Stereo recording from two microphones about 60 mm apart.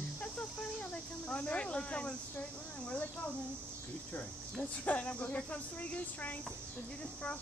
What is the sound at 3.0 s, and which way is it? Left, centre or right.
Speech, left.